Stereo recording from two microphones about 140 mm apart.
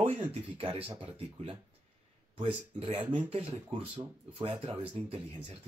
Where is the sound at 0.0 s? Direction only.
45° right (ahead or behind).